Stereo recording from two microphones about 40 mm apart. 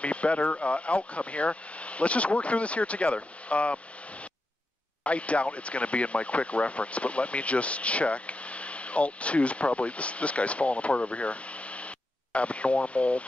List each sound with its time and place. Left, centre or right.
0.0 s speech: left
5.0 s speech: left